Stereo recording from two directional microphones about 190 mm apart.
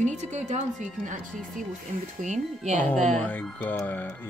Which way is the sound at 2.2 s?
40° right (ahead or behind).